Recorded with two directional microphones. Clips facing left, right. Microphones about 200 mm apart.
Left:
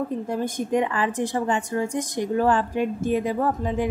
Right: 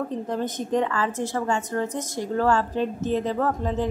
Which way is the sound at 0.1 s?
10° left (ahead or behind).